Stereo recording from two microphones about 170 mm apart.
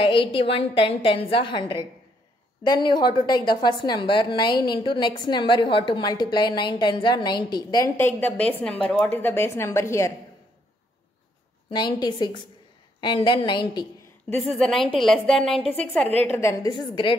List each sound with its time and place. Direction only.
0.0 s a woman's voice: 30° left (ahead or behind)
11.7 s a woman's voice: 25° left (ahead or behind)
14.4 s a woman's voice: centre (ahead or behind)
16.7 s a woman's voice: 30° left (ahead or behind)